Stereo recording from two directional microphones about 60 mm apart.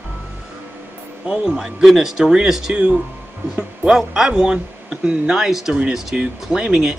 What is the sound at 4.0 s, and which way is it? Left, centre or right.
Speech, centre.